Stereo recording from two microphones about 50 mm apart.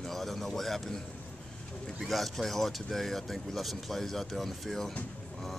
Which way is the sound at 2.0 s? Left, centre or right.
Centre.